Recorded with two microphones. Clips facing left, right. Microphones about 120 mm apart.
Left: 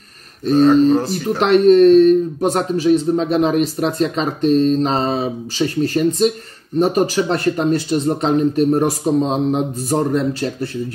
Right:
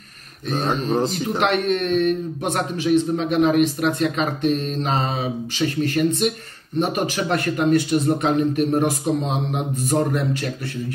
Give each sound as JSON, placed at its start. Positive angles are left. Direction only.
{"t": 0.9, "sound": "speech", "side_deg": -20}
{"t": 1.4, "sound": "a man's voice", "side_deg": 35}